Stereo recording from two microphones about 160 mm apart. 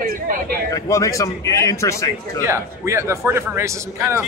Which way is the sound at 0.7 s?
20° left (ahead or behind).